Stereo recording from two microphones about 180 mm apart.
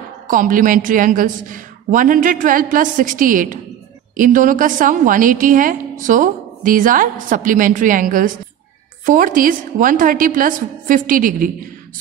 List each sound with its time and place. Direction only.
0.3 s a woman's voice: 50° right (ahead or behind)